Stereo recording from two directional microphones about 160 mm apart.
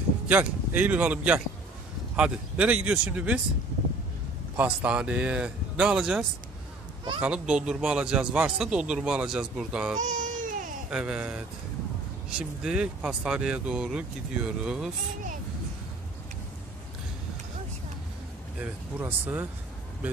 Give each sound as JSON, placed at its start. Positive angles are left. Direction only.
{"t": 0.3, "sound": "speech", "side_deg": -10}
{"t": 4.6, "sound": "speech", "side_deg": -5}
{"t": 9.9, "sound": "baby cry", "side_deg": -50}
{"t": 10.9, "sound": "speech", "side_deg": -5}
{"t": 18.6, "sound": "speech", "side_deg": -10}